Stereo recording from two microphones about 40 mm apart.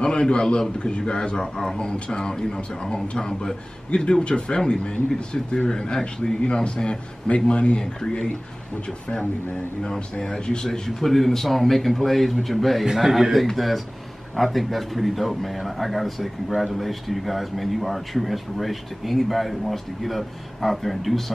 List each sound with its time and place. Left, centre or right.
0.0 s speech: left
10.2 s speech: centre